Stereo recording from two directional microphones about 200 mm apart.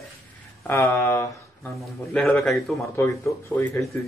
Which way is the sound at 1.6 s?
Centre (ahead or behind).